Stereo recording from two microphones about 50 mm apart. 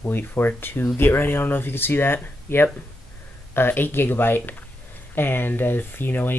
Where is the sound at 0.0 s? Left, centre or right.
Left.